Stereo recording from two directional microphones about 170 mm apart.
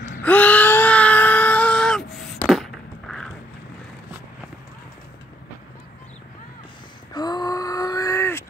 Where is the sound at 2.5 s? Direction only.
Centre (ahead or behind).